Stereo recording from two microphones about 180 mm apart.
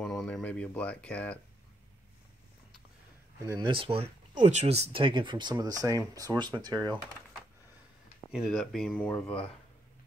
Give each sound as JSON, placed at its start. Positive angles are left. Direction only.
{"t": 0.0, "sound": "speech", "side_deg": 5}
{"t": 3.5, "sound": "speech", "side_deg": -25}
{"t": 8.3, "sound": "speech", "side_deg": 0}